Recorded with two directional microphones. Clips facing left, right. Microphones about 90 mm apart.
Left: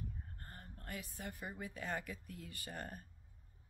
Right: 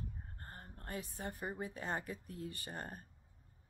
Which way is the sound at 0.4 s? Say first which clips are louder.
Right 2 dB; 35° right (ahead or behind).